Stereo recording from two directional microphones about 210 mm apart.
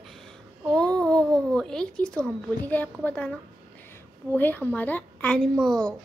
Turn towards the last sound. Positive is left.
turn(degrees=5)  # may be behind; listen again after turning